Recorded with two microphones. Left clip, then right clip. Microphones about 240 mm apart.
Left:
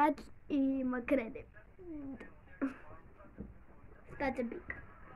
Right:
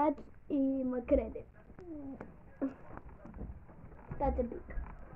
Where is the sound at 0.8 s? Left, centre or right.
Left.